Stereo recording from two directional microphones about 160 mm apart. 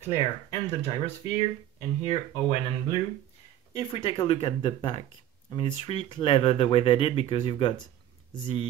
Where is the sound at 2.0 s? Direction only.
40° left (ahead or behind).